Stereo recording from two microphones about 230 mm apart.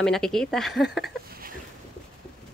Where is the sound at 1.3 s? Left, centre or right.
Right.